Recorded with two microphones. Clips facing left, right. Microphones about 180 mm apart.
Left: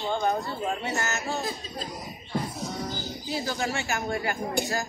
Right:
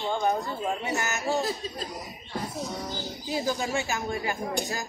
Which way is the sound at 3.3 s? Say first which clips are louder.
Right 2 dB; 15° right (ahead or behind).